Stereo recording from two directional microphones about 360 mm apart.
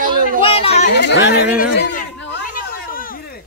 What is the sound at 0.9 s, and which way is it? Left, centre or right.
Speech, left.